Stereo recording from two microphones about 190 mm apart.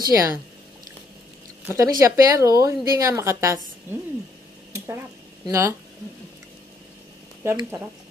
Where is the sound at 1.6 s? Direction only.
15° right (ahead or behind).